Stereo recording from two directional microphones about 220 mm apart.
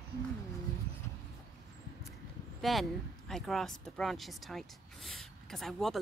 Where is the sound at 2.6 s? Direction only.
Centre (ahead or behind).